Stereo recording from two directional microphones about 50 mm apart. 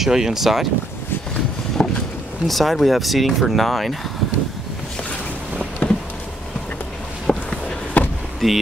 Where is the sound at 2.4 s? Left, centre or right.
Centre.